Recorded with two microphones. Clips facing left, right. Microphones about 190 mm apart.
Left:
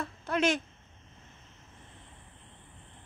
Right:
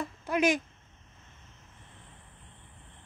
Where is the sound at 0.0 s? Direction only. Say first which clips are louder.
Right 2 dB; 15° right (ahead or behind).